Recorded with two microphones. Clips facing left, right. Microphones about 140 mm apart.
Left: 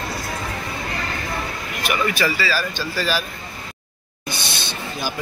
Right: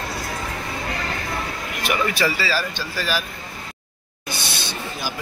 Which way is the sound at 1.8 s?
30° right (ahead or behind).